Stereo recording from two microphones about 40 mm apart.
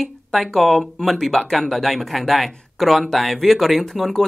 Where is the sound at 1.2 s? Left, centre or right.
Centre.